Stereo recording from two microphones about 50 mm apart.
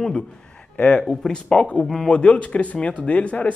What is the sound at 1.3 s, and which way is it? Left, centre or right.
Speech, left.